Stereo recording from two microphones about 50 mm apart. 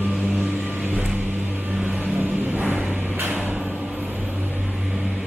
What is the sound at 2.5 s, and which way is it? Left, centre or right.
Vehicle, right.